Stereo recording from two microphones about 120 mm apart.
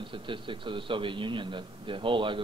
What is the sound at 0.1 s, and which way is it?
A man's voice, 45° right (ahead or behind).